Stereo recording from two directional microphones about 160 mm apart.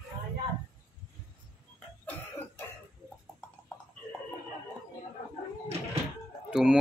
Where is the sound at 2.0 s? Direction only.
10° left (ahead or behind).